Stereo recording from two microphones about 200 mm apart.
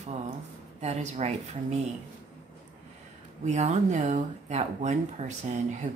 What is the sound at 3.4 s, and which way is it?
Speech, 35° right (ahead or behind).